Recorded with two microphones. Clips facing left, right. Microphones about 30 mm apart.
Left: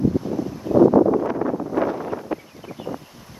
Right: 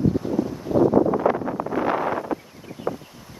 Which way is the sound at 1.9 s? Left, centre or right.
Right.